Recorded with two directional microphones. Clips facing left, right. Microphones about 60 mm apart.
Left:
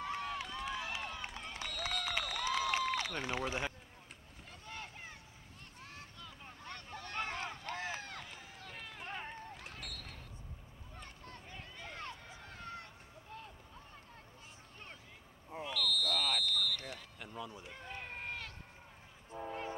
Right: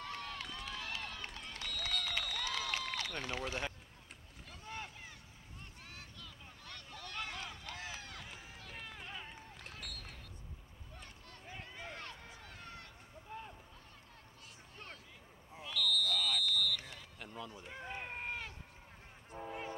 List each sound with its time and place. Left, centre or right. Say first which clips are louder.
0.0 s run: left 5 dB; centre
3.3 s speech: left 3 dB; left
4.6 s boat: right 2 dB; right
6.1 s boat: left 3 dB; left
8.7 s run: right 1 dB; centre
9.0 s run: left 4 dB; left
9.8 s a sound: right 1 dB; centre
11.4 s a sound: right 4 dB; centre
12.0 s run: left 2 dB; left
13.3 s a sound: right 3 dB; centre
15.7 s a sound: even; centre
17.7 s run: right 4 dB; centre
19.3 s train: left 2 dB; centre